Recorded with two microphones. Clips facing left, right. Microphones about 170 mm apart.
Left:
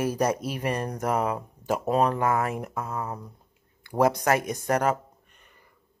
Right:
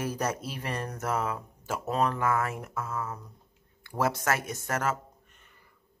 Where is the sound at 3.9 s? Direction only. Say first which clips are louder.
Left 6 dB; 15° left (ahead or behind).